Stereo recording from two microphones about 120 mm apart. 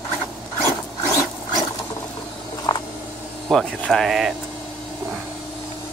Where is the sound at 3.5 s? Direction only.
5° left (ahead or behind).